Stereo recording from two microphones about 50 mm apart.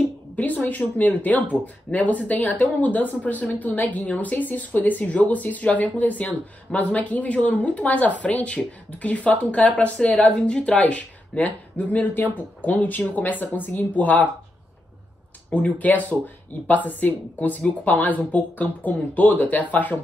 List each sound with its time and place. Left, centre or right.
0.4 s a woman's voice: left
15.5 s a woman's voice: left